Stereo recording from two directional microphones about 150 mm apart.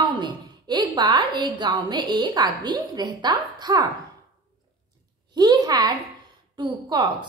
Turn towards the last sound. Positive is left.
turn(degrees=-30)  # may be behind; listen again after turning